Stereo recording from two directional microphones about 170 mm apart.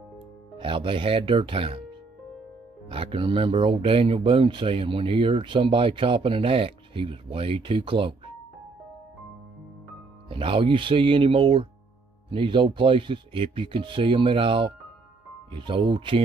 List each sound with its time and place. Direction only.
0.6 s speech: 30° right (ahead or behind)
10.2 s speech: 30° right (ahead or behind)